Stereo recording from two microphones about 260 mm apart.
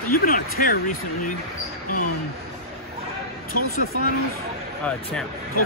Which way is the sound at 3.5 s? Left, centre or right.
Left.